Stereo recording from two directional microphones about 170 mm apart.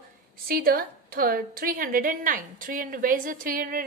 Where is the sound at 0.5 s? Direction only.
60° right (ahead or behind).